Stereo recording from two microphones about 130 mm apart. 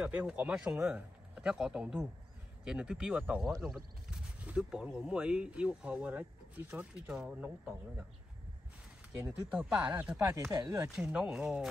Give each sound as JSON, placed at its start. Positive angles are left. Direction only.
{"t": 0.0, "sound": "speech", "side_deg": -10}
{"t": 9.5, "sound": "speech", "side_deg": -10}
{"t": 10.5, "sound": "speech", "side_deg": -25}
{"t": 11.0, "sound": "speech", "side_deg": -5}